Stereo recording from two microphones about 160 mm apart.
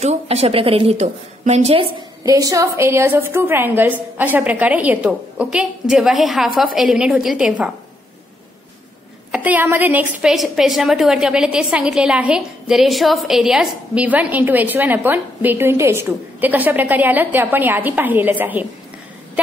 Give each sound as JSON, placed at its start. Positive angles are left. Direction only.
{"t": 0.0, "sound": "a woman's voice", "side_deg": -40}
{"t": 2.2, "sound": "a woman's voice", "side_deg": -20}
{"t": 9.3, "sound": "a woman's voice", "side_deg": -10}
{"t": 10.2, "sound": "a woman's voice", "side_deg": 0}